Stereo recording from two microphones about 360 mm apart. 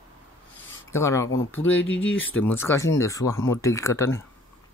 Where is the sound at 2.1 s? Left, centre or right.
Left.